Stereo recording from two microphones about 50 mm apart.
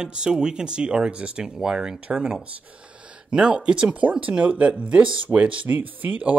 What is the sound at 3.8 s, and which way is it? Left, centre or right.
Speech, right.